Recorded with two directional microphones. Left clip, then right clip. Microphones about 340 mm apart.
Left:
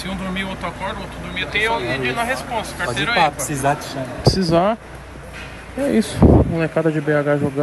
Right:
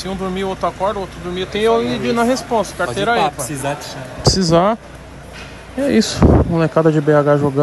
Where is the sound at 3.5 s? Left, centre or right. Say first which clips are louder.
Left 3 dB; centre.